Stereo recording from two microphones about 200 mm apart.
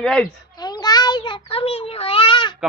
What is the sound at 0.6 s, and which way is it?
Meow, 20° left (ahead or behind).